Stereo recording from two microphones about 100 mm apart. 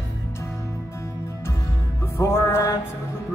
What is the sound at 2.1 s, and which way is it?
Music, 25° left (ahead or behind).